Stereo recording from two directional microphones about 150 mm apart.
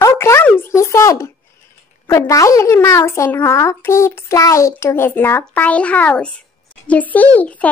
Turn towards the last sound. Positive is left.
turn(degrees=10)  # may be behind; listen again after turning